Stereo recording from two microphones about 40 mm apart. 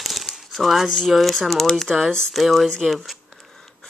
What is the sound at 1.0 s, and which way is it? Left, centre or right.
Speech, centre.